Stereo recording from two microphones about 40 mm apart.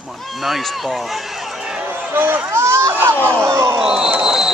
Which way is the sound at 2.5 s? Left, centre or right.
Right.